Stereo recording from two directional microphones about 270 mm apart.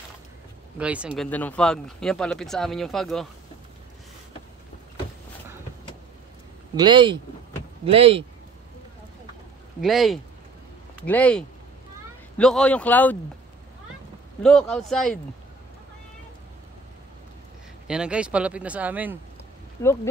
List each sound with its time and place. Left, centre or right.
0.7 s speech: centre
6.7 s speech: centre
9.8 s speech: centre
14.4 s speech: centre
17.8 s speech: centre
19.8 s speech: centre